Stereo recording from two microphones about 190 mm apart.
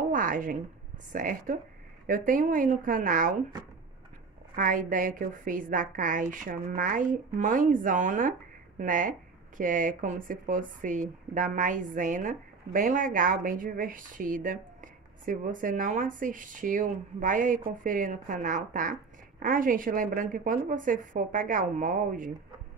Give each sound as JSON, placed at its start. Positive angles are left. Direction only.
{"t": 0.0, "sound": "a woman's voice", "side_deg": -45}
{"t": 4.6, "sound": "speech", "side_deg": -45}